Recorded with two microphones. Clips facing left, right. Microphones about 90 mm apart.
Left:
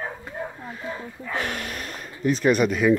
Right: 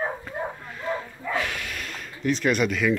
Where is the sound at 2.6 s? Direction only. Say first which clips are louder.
Left 4 dB; 35° left (ahead or behind).